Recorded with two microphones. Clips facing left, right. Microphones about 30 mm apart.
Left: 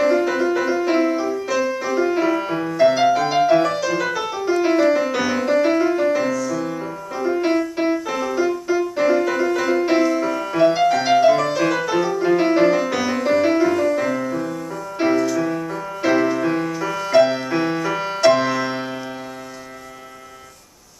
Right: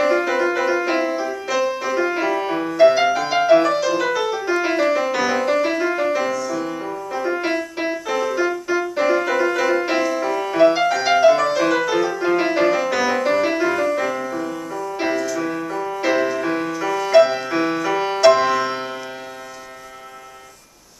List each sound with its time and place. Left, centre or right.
0.0 s music: centre
7.2 s music: centre
8.5 s music: centre